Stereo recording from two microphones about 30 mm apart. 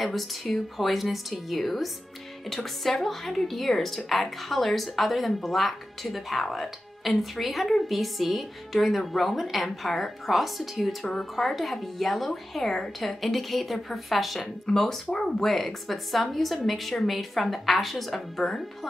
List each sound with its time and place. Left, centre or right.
0.0 s a woman's voice: centre
13.2 s a woman's voice: centre
14.7 s speech: centre
15.4 s a woman's voice: centre